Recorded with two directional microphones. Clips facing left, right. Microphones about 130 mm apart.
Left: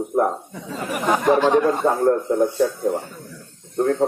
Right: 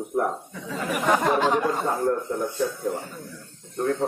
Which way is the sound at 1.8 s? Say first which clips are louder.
Left 7 dB; 65° left (ahead or behind).